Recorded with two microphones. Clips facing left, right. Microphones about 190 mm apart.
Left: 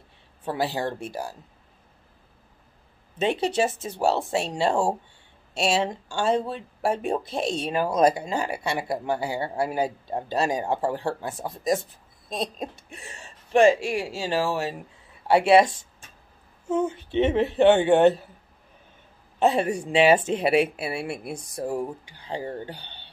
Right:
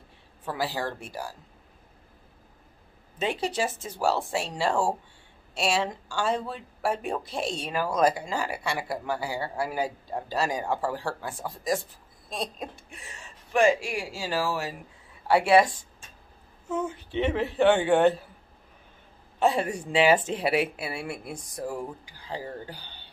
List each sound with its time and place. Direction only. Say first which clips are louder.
0.5 s speech: left 4 dB; 25° left (ahead or behind)
3.2 s speech: left 5 dB; 25° left (ahead or behind)
12.3 s owl: left 4 dB; 25° left (ahead or behind)
13.5 s speech: left 4 dB; 25° left (ahead or behind)
19.4 s speech: left 3 dB; 25° left (ahead or behind)